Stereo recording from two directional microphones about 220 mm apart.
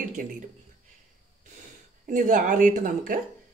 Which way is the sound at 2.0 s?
35° right (ahead or behind).